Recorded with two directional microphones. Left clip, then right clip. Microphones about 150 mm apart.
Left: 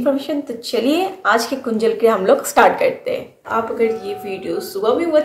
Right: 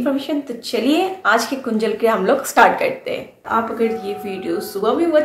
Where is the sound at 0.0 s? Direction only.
10° left (ahead or behind).